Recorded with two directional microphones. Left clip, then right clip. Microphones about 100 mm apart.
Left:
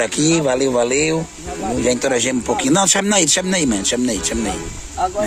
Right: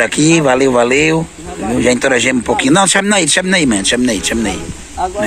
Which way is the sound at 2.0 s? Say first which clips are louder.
Right 6 dB; 20° left (ahead or behind).